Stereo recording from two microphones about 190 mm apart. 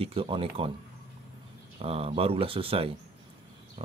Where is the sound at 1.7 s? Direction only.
30° right (ahead or behind).